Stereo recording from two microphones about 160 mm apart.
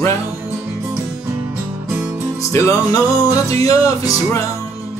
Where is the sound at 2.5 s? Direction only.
20° left (ahead or behind).